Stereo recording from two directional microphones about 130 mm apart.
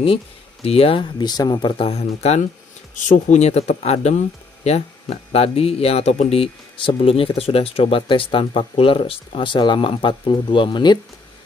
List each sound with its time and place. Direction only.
0.0 s speech: 45° left (ahead or behind)
1.2 s speech: 30° left (ahead or behind); by 2.4 s 55° left (ahead or behind)
2.9 s speech: 75° left (ahead or behind); by 11.0 s 35° left (ahead or behind)